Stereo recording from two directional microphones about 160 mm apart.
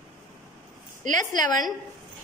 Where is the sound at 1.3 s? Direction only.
25° left (ahead or behind).